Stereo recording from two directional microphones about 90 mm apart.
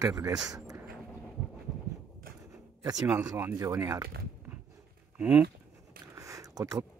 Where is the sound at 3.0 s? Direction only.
25° right (ahead or behind).